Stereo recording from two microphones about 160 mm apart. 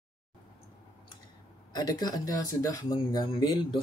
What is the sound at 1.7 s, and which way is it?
Speech, 25° left (ahead or behind).